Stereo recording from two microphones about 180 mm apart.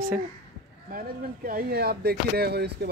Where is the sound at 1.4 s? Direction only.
55° right (ahead or behind).